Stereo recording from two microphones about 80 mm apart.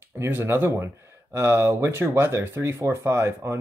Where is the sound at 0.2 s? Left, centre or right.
Right.